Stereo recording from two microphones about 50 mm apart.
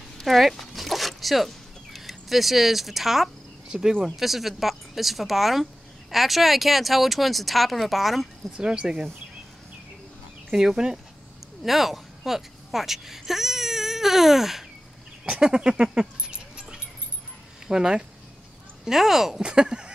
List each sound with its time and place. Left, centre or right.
0.2 s a sound: centre
3.6 s speech: centre
8.5 s speech: centre
10.5 s speech: centre
15.2 s a sound: centre
17.6 s speech: centre